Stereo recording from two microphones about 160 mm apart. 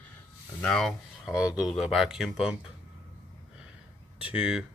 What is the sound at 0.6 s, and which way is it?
Speech, 5° left (ahead or behind).